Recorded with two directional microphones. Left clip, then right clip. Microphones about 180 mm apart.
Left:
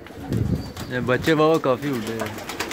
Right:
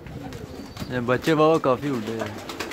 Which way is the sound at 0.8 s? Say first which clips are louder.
Left 2 dB; 10° right (ahead or behind).